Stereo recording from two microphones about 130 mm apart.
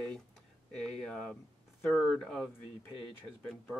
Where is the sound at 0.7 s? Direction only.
5° left (ahead or behind).